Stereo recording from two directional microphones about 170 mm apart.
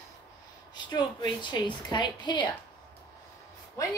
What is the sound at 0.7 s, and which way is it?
A woman's voice, 25° left (ahead or behind).